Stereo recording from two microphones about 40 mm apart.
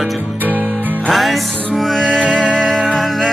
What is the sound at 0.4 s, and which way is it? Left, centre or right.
Music, right.